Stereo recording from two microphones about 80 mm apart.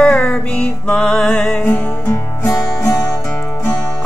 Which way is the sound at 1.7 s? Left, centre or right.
Centre.